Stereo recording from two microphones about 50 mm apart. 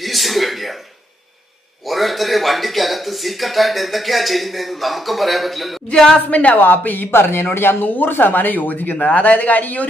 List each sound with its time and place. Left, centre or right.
0.0 s a sound: centre
1.9 s speech: centre
6.3 s speech: left
7.1 s speech: left